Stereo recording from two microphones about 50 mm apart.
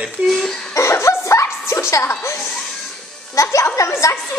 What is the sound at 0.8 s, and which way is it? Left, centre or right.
A woman's voice, left.